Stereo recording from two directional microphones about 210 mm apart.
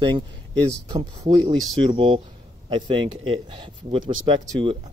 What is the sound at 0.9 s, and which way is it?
Speech, 20° right (ahead or behind).